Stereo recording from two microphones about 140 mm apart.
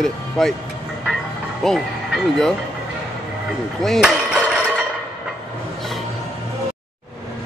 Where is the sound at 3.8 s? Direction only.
Centre (ahead or behind).